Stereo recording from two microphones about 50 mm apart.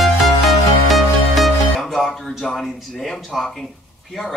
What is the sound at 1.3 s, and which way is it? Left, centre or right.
Speech, centre.